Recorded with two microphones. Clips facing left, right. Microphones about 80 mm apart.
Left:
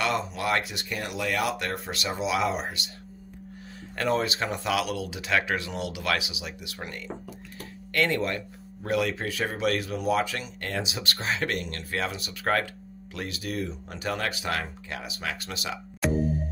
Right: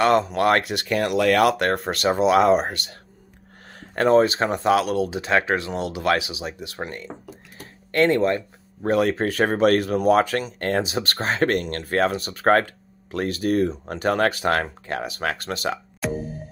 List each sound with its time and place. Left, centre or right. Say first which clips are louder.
0.0 s speech: right 10 dB; right
3.9 s speech: right 10 dB; right
16.0 s music: left 5 dB; centre